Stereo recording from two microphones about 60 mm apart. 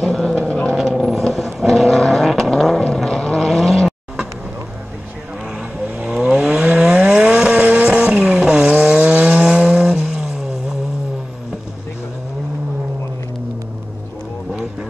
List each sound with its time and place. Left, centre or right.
0.0 s vehicle: centre
0.4 s vehicle: left
0.7 s vehicle: centre
5.9 s vehicle: right
14.5 s music: centre